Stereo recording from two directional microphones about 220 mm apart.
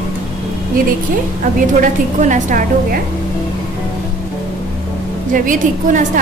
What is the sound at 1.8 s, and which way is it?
A woman's voice, 35° right (ahead or behind).